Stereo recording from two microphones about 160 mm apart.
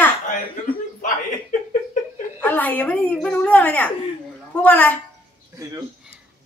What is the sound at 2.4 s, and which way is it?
Speech, 10° left (ahead or behind).